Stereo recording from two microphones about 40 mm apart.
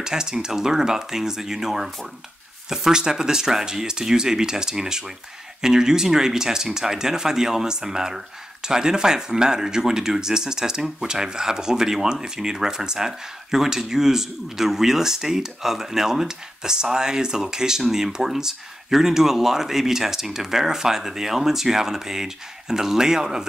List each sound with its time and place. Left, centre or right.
0.0 s speech: centre